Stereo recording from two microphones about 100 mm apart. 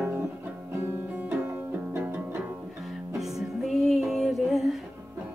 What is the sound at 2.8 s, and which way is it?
Music, centre (ahead or behind).